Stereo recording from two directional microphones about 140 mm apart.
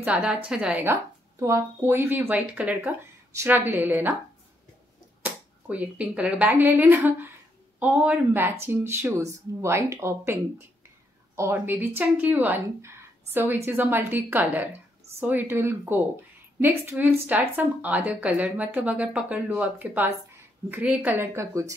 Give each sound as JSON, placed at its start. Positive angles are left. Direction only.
{"t": 0.0, "sound": "a woman's voice", "side_deg": -10}
{"t": 1.4, "sound": "a woman's voice", "side_deg": -20}
{"t": 5.2, "sound": "a woman's voice", "side_deg": -10}